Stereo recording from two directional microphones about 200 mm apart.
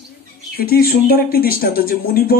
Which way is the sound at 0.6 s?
50° left (ahead or behind).